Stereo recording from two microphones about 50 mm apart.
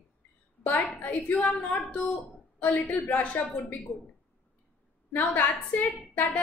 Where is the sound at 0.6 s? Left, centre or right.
Left.